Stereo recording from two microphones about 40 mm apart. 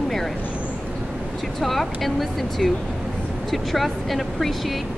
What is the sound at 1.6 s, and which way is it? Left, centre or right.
Speech, centre.